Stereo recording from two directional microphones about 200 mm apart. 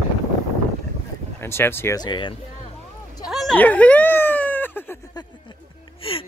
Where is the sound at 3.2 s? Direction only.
Centre (ahead or behind).